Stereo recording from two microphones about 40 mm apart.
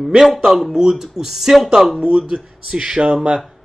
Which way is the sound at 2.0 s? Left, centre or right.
Right.